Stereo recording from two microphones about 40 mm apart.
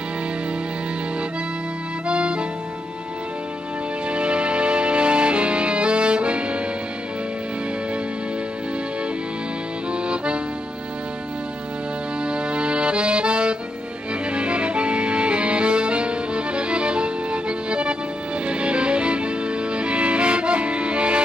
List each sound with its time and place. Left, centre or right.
2.0 s music: right
4.1 s music: right
10.0 s accordion: right
12.3 s accordion: right
14.3 s music: right